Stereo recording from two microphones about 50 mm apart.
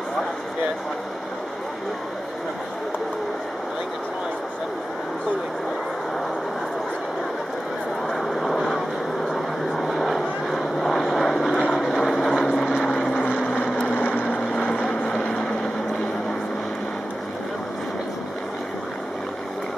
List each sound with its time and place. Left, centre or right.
8.1 s vehicle: centre
13.9 s vehicle: left
14.7 s vehicle: centre